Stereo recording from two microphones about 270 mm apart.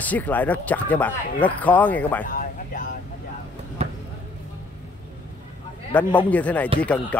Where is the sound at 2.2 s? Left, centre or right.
Left.